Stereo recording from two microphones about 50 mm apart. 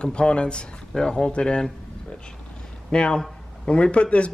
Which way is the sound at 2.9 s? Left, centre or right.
Centre.